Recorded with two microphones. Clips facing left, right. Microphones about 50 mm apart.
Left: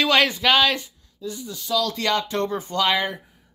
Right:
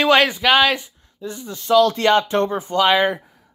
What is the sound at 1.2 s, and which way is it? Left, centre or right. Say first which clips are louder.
Speech: right 2 dB; right.